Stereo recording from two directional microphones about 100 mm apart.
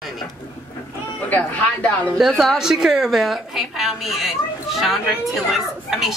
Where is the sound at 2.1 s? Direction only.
Centre (ahead or behind).